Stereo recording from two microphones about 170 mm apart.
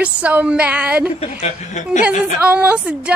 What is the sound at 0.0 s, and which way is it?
A woman's voice, 10° right (ahead or behind).